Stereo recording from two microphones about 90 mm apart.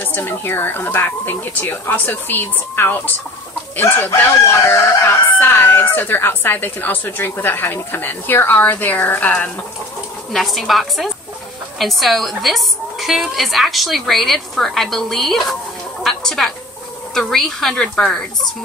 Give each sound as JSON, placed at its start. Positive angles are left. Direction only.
{"t": 0.0, "sound": "speech", "side_deg": 25}
{"t": 10.3, "sound": "a woman's voice", "side_deg": 0}
{"t": 16.0, "sound": "a sound", "side_deg": 5}
{"t": 17.1, "sound": "a woman's voice", "side_deg": 5}